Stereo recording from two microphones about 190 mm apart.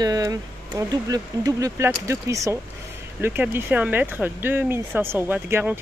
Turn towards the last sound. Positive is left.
turn(degrees=-10)  # may be behind; listen again after turning